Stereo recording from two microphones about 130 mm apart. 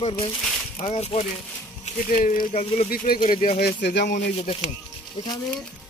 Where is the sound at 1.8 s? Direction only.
90° left.